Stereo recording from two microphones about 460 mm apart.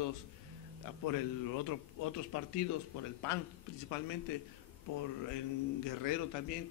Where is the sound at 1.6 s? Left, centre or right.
Left.